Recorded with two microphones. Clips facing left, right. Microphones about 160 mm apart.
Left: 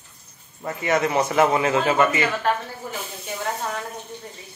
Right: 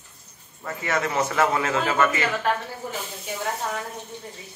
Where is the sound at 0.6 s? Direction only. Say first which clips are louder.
Left 4 dB; 20° left (ahead or behind).